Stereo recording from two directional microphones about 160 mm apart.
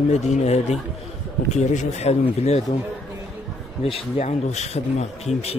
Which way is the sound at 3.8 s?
40° left (ahead or behind).